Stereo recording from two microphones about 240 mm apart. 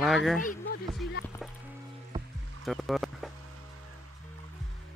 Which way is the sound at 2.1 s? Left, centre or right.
Centre.